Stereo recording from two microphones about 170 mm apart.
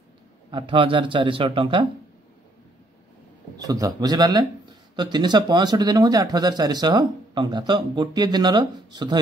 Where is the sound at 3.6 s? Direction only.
20° right (ahead or behind).